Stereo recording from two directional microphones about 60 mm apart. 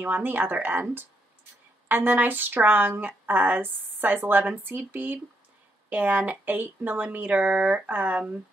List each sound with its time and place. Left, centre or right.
0.0 s speech: right
1.9 s speech: right